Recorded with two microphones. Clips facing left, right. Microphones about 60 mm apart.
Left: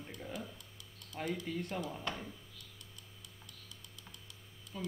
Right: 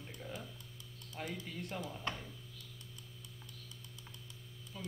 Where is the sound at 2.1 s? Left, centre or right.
Right.